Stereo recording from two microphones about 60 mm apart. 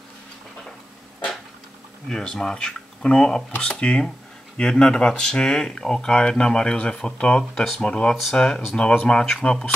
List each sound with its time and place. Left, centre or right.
2.0 s speech: centre